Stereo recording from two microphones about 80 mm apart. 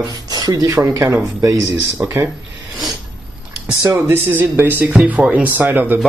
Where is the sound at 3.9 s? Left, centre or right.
Right.